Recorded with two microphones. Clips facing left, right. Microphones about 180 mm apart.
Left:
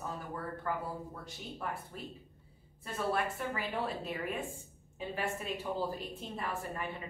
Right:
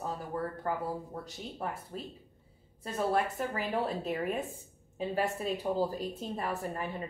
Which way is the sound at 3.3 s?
40° right (ahead or behind).